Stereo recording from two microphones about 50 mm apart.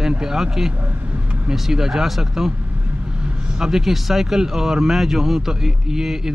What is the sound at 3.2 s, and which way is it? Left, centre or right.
Speech, centre.